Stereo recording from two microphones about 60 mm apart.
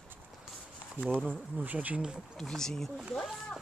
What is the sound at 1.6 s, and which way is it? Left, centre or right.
Speech, right.